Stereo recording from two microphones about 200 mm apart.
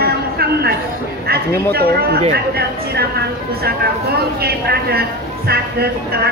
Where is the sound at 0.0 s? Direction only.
50° right (ahead or behind).